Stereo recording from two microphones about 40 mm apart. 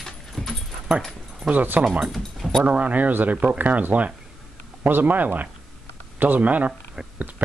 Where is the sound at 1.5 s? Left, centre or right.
Right.